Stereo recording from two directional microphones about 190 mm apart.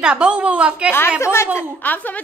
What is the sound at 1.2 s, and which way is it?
Speech, 15° left (ahead or behind).